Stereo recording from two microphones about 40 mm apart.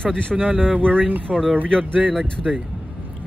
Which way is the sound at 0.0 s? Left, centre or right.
Left.